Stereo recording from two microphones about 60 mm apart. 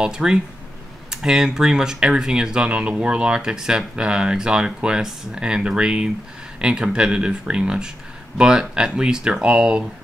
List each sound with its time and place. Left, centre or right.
0.0 s speech: centre